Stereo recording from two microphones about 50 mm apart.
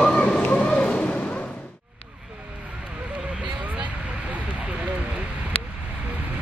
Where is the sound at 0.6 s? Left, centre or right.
Left.